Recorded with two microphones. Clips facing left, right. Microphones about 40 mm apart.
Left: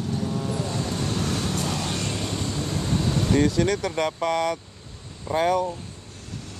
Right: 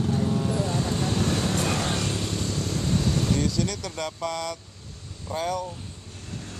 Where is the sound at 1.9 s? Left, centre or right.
Centre.